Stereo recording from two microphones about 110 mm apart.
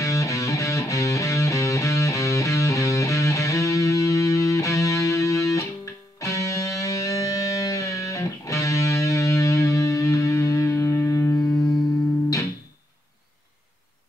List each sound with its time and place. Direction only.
0.0 s music: 30° left (ahead or behind)